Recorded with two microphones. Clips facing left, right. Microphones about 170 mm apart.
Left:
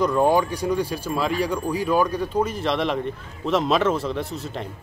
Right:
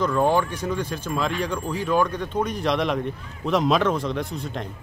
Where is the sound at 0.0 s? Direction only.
10° left (ahead or behind).